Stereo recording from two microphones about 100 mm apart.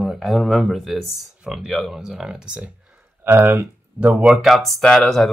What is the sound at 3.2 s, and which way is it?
Speech, 20° right (ahead or behind).